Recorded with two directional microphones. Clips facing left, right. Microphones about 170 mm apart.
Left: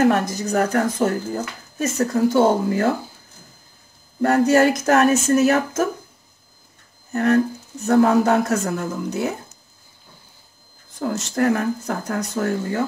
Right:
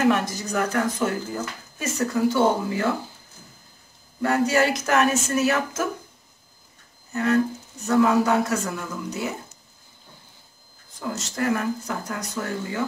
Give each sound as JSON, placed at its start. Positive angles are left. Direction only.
{"t": 0.0, "sound": "speech", "side_deg": 40}
{"t": 4.2, "sound": "speech", "side_deg": 45}
{"t": 7.1, "sound": "speech", "side_deg": 50}
{"t": 11.0, "sound": "speech", "side_deg": 50}